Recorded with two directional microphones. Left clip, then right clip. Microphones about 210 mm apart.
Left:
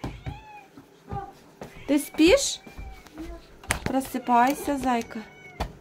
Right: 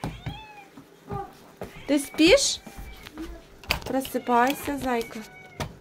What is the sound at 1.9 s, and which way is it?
Speech, 20° left (ahead or behind).